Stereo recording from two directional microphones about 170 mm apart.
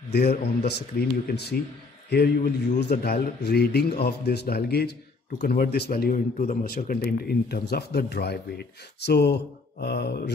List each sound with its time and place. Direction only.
0.1 s a man's voice: 70° left (ahead or behind)